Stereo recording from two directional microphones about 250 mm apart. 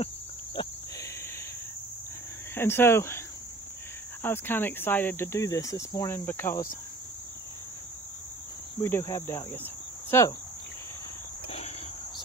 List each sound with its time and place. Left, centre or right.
0.6 s cricket: left
2.5 s speech: centre
4.2 s speech: centre
8.8 s speech: centre
11.4 s cricket: left